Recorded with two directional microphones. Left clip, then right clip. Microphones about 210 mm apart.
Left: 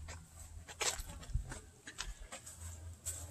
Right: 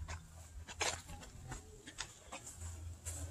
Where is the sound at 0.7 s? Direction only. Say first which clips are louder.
Even; 15° left (ahead or behind).